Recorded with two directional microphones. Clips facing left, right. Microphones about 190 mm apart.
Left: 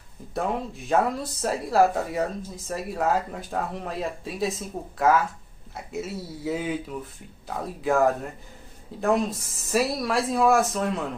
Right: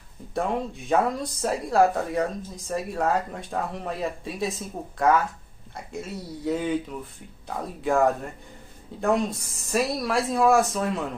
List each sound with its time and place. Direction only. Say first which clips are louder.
0.3 s speech: right 1 dB; centre (ahead or behind)